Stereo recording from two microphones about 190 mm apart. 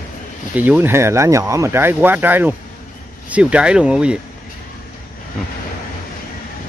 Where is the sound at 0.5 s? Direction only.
10° right (ahead or behind).